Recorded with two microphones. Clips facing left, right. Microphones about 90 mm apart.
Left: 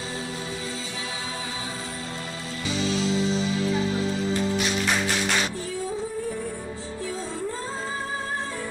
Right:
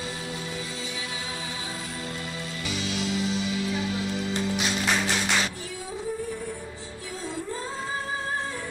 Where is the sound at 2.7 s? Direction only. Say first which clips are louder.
Left 5 dB; 35° left (ahead or behind).